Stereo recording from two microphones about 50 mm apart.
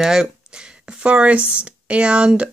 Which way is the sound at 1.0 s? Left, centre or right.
Right.